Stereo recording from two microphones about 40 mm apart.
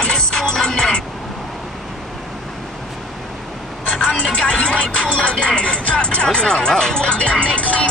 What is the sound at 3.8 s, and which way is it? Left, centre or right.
Speech, left.